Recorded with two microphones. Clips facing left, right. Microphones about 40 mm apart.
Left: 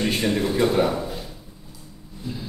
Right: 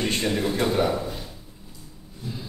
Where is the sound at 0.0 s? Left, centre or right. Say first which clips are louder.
Left 2 dB; centre.